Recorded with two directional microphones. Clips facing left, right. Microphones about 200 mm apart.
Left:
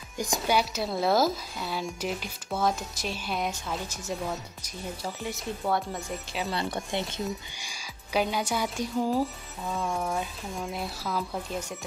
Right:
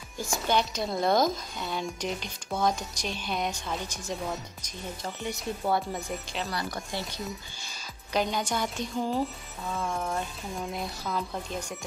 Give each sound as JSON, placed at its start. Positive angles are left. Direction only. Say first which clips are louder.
{"t": 0.2, "sound": "speech", "louder": "left 1 dB", "side_deg": 15}
{"t": 6.5, "sound": "speech", "louder": "left 6 dB", "side_deg": 25}
{"t": 7.6, "sound": "speech", "louder": "even", "side_deg": 10}